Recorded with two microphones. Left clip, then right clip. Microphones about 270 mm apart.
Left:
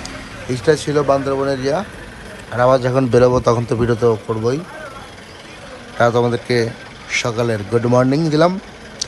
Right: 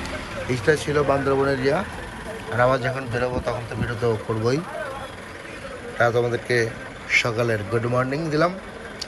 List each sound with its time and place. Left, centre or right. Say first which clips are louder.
0.0 s a man's voice: even; centre
4.0 s a man's voice: left 7 dB; centre
5.9 s speech: left 5 dB; left